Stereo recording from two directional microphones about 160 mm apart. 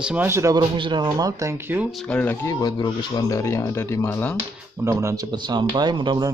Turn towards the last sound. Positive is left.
turn(degrees=-30)  # may be behind; listen again after turning